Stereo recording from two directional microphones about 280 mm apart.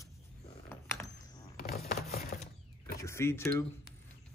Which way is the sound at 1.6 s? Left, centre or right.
Left.